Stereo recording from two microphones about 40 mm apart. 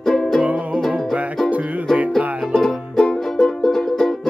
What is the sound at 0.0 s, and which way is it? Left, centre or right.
Music, centre.